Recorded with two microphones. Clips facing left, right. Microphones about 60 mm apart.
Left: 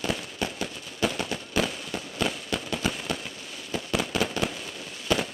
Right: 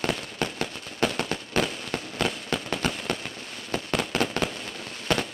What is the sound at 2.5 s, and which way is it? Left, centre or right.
Fireworks, centre.